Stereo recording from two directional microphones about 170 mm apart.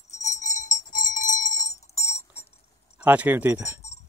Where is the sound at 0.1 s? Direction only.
45° left (ahead or behind).